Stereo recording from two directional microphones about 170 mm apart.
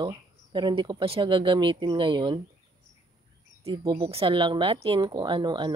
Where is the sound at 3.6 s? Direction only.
25° right (ahead or behind).